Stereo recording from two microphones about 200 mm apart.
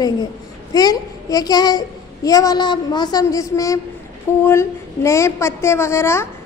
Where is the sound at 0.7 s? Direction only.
20° left (ahead or behind).